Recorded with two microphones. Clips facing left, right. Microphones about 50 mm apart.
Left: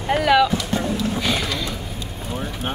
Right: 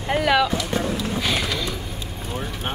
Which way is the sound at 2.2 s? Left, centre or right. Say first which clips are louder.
Left 2 dB; centre.